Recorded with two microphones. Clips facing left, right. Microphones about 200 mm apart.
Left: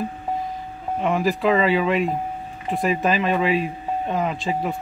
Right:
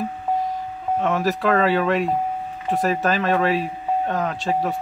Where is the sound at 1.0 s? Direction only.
10° left (ahead or behind).